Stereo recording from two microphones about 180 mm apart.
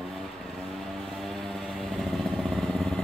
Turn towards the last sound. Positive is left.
turn(degrees=0)  # may be behind; listen again after turning